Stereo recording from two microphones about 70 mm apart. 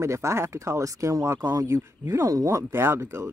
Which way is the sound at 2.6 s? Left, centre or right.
Right.